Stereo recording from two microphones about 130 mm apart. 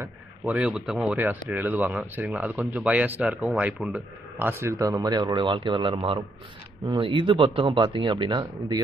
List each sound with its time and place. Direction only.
0.5 s speech: 5° right (ahead or behind)
1.1 s speech: 15° right (ahead or behind); by 8.8 s 35° right (ahead or behind)